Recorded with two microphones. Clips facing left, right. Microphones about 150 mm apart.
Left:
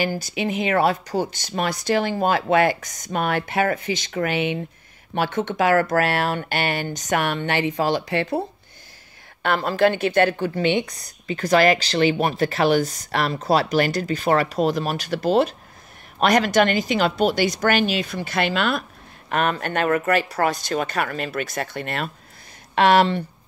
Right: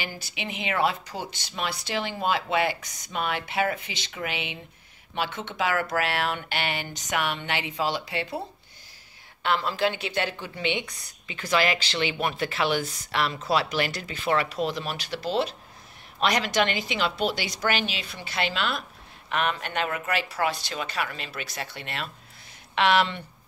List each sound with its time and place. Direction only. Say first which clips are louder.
0.0 s a woman's voice: left 11 dB; 40° left (ahead or behind)
9.4 s a woman's voice: left 6 dB; 50° left (ahead or behind)